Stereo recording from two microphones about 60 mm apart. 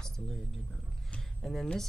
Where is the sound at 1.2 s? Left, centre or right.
Centre.